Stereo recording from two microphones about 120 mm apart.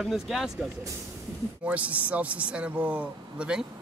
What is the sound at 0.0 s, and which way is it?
Speech, 5° right (ahead or behind).